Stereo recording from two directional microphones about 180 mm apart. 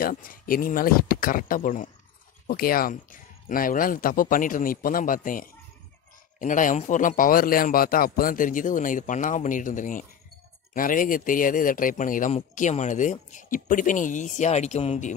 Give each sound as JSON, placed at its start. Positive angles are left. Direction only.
{"t": 0.0, "sound": "a man's voice", "side_deg": 50}